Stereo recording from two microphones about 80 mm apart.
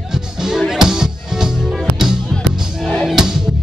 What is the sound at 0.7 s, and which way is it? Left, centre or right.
Music, centre.